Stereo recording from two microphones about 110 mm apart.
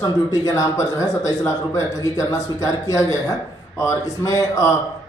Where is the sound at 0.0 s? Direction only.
30° left (ahead or behind).